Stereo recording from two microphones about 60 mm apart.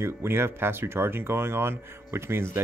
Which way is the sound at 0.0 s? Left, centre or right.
Right.